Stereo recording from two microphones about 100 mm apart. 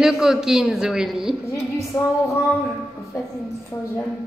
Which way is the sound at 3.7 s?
30° left (ahead or behind).